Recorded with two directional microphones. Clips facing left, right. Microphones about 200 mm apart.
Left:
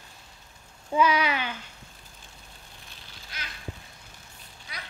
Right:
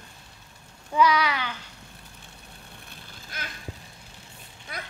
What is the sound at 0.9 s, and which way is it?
Speech, 15° left (ahead or behind).